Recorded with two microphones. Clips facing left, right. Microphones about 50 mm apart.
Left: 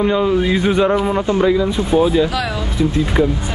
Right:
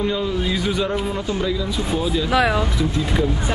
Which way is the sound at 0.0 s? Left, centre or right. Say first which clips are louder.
Left 7 dB; left.